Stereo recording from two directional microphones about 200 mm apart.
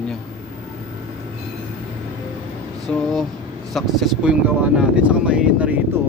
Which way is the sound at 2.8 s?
Centre (ahead or behind).